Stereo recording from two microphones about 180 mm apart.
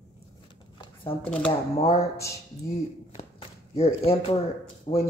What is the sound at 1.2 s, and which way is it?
Speech, 5° left (ahead or behind).